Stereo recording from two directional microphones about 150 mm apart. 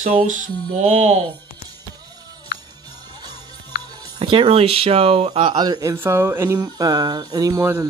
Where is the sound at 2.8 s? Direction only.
25° right (ahead or behind).